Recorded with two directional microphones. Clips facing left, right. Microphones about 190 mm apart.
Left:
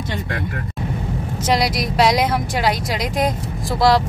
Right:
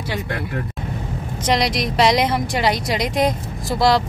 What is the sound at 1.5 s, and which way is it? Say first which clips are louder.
A woman's voice: even; 5° left (ahead or behind).